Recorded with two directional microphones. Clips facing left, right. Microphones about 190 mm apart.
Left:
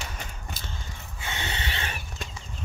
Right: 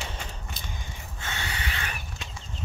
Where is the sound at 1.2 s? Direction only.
20° left (ahead or behind).